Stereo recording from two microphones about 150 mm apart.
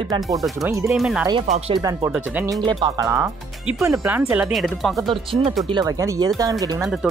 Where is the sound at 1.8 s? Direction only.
25° right (ahead or behind).